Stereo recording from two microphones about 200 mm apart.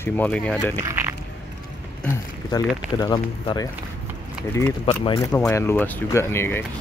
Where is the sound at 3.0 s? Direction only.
20° left (ahead or behind).